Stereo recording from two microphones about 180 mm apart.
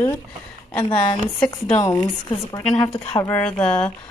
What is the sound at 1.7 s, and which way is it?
Speech, 15° left (ahead or behind).